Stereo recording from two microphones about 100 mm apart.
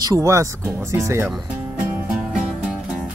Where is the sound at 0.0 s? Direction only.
35° right (ahead or behind).